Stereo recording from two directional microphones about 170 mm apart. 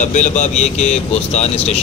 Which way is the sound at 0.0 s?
45° left (ahead or behind).